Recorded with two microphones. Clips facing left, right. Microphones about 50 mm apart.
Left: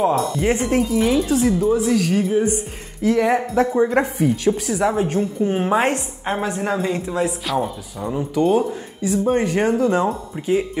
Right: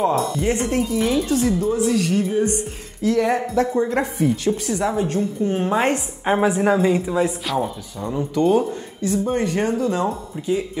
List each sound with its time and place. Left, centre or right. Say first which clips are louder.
0.0 s a woman's voice: left 1 dB; centre
4.9 s a woman's voice: left 1 dB; left
5.9 s a woman's voice: right 2 dB; centre; by 10.0 s left